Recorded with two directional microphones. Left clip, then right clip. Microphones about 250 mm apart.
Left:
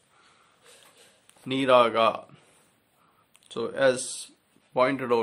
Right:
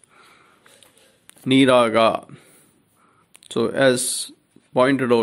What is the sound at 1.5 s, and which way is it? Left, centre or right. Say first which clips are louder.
Speech: right 5 dB; centre.